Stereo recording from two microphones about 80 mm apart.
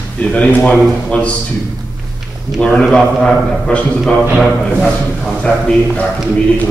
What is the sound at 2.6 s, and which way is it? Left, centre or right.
A man's voice, centre.